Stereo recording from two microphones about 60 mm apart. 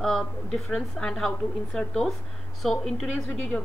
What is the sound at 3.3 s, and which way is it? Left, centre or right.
Speech, left.